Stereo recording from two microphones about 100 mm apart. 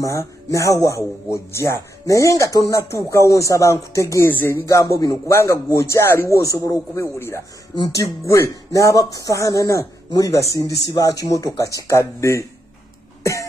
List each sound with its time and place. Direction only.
0.0 s speech: 30° left (ahead or behind)
4.6 s speech: 30° left (ahead or behind)
13.2 s cough: 30° left (ahead or behind)